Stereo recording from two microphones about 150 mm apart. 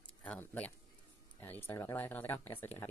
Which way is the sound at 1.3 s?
15° left (ahead or behind).